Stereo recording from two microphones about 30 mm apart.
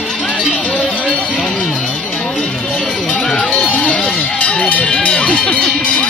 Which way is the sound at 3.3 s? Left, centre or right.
Left.